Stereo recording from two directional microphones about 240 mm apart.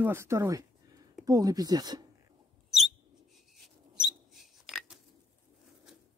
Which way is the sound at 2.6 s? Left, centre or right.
Centre.